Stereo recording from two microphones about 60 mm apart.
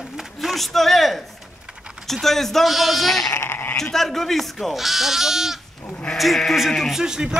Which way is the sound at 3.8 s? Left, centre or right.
Centre.